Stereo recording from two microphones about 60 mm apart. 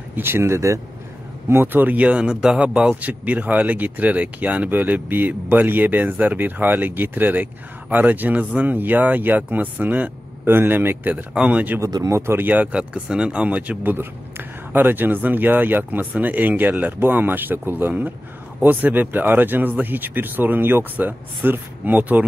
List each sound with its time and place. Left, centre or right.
0.1 s speech: right
1.5 s a man's voice: right
10.5 s speech: right
11.3 s a man's voice: right
11.8 s speech: right
12.7 s a man's voice: centre
13.9 s a man's voice: right